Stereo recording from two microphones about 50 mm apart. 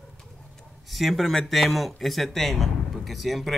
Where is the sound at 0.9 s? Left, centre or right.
Centre.